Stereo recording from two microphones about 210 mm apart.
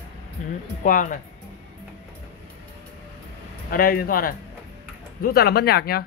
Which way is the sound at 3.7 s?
45° left (ahead or behind).